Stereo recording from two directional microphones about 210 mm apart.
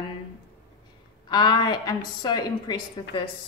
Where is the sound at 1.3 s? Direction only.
20° left (ahead or behind).